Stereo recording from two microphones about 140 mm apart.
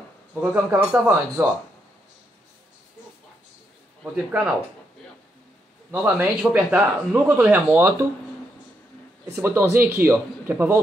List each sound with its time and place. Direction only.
0.3 s speech: 10° right (ahead or behind)
4.0 s speech: 10° right (ahead or behind)
6.0 s speech: 10° right (ahead or behind)
9.3 s speech: 15° right (ahead or behind)